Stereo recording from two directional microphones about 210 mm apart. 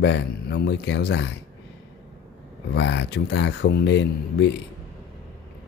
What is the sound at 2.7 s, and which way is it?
Speech, 55° left (ahead or behind).